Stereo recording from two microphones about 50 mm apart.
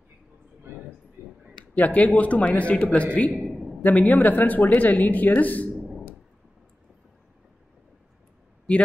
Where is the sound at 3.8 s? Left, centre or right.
Left.